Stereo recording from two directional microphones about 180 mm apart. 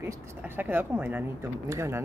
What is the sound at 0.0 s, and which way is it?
A woman's voice, 10° right (ahead or behind).